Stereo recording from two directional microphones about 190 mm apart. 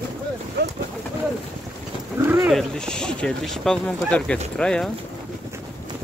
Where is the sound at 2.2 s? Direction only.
5° right (ahead or behind).